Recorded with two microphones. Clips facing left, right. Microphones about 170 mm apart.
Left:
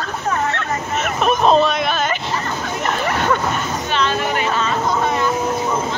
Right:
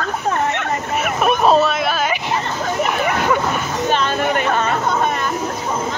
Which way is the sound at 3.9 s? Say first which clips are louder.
Right 2 dB; 50° right (ahead or behind).